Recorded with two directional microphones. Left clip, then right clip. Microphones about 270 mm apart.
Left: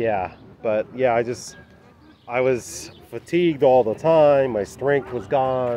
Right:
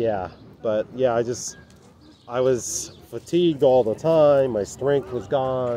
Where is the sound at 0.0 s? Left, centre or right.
Centre.